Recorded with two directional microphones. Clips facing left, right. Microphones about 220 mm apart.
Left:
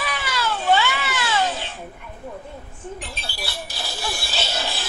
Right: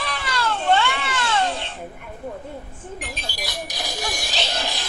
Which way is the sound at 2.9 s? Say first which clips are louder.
Right 5 dB; 15° right (ahead or behind).